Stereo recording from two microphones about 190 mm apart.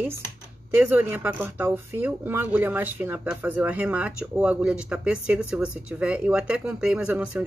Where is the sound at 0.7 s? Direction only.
10° right (ahead or behind).